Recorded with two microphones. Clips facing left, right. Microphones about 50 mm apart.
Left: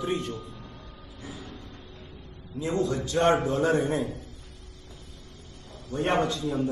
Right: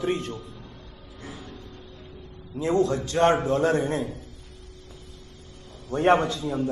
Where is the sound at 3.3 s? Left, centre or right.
Centre.